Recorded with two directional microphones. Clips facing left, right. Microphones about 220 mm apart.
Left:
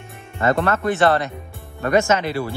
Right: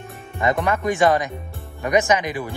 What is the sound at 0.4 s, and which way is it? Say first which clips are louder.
Speech: left 2 dB; 15° right (ahead or behind).